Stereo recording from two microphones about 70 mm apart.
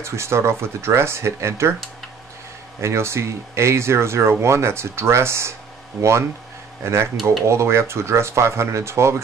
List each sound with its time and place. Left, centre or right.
0.0 s speech: right
2.8 s speech: right